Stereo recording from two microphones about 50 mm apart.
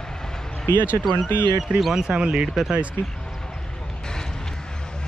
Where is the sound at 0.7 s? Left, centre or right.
Left.